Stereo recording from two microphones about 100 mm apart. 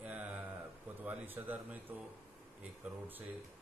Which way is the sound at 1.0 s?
20° right (ahead or behind).